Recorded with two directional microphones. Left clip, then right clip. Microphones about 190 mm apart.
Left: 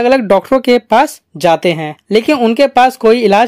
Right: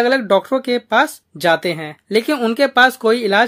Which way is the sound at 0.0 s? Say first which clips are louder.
Left 5 dB; 35° left (ahead or behind).